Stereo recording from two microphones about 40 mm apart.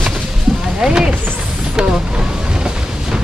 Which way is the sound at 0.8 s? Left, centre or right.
Centre.